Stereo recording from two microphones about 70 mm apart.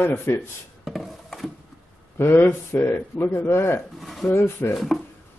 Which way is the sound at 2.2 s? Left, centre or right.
Left.